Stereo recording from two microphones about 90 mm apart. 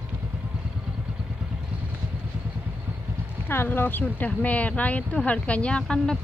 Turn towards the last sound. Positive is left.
turn(degrees=10)  # may be behind; listen again after turning